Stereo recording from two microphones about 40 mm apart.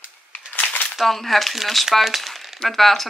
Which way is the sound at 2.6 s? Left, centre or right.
Centre.